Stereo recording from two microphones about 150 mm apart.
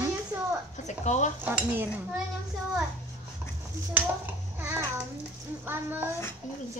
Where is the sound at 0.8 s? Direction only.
50° left (ahead or behind).